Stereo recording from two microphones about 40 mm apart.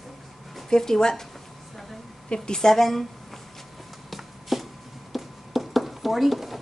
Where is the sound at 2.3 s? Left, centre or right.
Centre.